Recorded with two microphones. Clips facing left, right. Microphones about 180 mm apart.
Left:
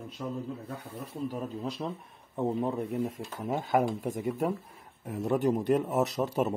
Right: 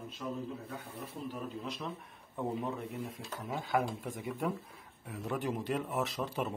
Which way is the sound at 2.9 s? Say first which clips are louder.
Left 8 dB; 45° left (ahead or behind).